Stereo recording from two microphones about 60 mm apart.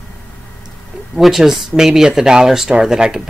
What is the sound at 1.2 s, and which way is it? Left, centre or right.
Speech, centre.